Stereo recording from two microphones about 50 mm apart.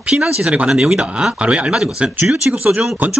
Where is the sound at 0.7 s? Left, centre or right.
Centre.